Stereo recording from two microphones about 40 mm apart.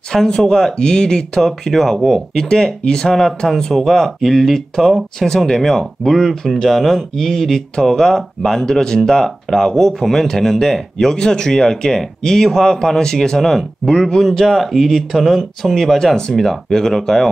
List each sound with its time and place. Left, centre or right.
0.1 s speech: centre
1.4 s speech: centre